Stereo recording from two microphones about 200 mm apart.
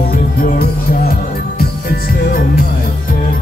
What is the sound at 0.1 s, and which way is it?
Music, 45° left (ahead or behind).